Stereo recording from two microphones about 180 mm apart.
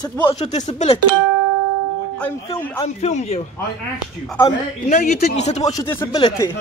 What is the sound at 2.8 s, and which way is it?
Speech, 35° left (ahead or behind).